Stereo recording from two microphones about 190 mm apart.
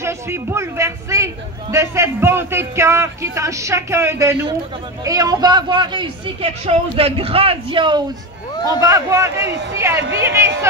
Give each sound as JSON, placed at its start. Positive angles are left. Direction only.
{"t": 0.0, "sound": "a man's voice", "side_deg": -15}
{"t": 9.5, "sound": "a man's voice", "side_deg": -65}
{"t": 9.8, "sound": "a man's voice", "side_deg": -15}